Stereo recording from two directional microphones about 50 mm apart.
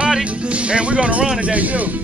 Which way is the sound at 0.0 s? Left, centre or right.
Right.